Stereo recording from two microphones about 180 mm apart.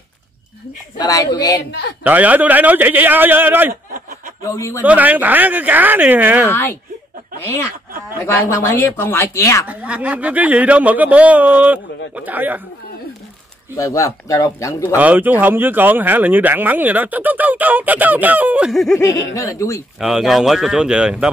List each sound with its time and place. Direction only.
0.9 s a woman's voice: 20° left (ahead or behind)
1.7 s a man's voice: 65° left (ahead or behind)
2.0 s speech: 10° right (ahead or behind)
4.4 s a man's voice: 15° left (ahead or behind)
4.8 s speech: 10° right (ahead or behind)
6.5 s a man's voice: 10° left (ahead or behind)
8.6 s a man's voice: 10° left (ahead or behind)
9.7 s speech: 5° right (ahead or behind)
13.7 s a man's voice: 20° left (ahead or behind)
15.0 s speech: 10° right (ahead or behind)
19.3 s a man's voice: 15° left (ahead or behind)
20.0 s speech: centre (ahead or behind)